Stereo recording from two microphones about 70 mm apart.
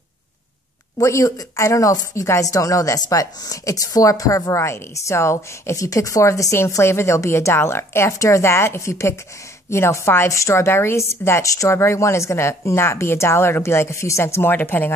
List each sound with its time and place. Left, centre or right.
0.9 s a woman's voice: left